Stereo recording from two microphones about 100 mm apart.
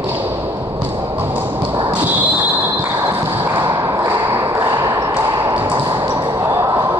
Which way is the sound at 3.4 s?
25° right (ahead or behind).